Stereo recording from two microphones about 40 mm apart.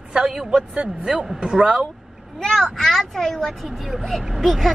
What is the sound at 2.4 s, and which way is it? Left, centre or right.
A child's voice, centre.